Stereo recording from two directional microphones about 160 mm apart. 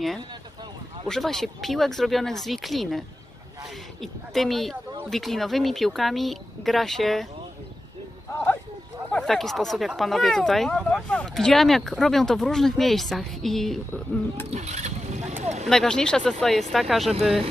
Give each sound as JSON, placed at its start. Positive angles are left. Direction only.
{"t": 1.0, "sound": "speech", "side_deg": 5}
{"t": 4.0, "sound": "speech", "side_deg": 0}
{"t": 8.3, "sound": "a sound", "side_deg": 15}
{"t": 9.1, "sound": "speech", "side_deg": 5}
{"t": 14.5, "sound": "a sound", "side_deg": -45}
{"t": 15.7, "sound": "speech", "side_deg": 5}